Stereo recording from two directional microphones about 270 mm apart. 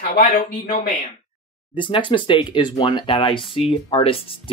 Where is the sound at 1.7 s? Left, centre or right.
Centre.